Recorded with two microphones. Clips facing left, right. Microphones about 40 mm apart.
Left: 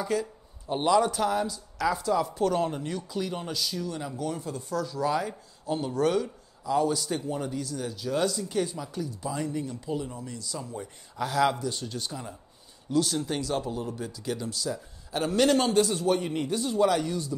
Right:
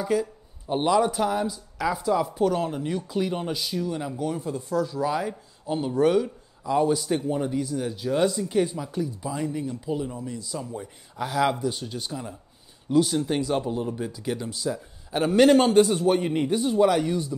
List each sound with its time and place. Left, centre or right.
0.0 s speech: centre
2.9 s speech: centre